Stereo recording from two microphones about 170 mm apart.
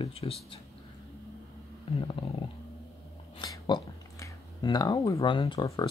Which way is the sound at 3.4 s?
25° left (ahead or behind).